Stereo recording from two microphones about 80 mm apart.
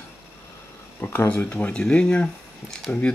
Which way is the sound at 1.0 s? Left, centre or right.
Left.